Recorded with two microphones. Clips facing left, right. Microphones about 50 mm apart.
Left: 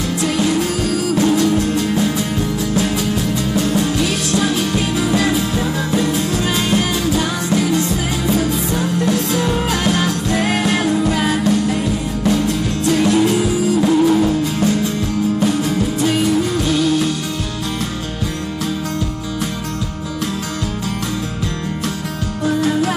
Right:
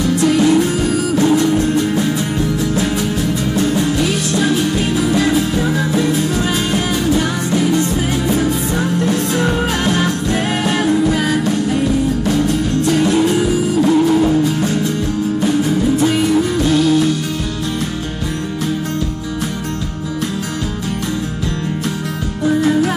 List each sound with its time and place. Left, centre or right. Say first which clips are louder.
0.2 s music: right 5 dB; right
3.5 s music: right 1 dB; right
6.3 s music: even; right
9.0 s music: even; right
12.8 s music: left 1 dB; right
13.7 s music: right 1 dB; centre